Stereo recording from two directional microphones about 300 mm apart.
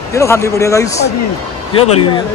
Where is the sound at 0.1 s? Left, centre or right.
Centre.